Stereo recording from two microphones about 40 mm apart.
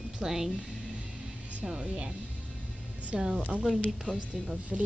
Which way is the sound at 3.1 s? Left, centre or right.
Centre.